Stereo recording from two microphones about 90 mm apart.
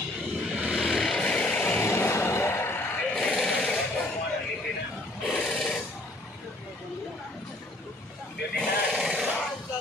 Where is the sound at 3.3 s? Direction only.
10° left (ahead or behind).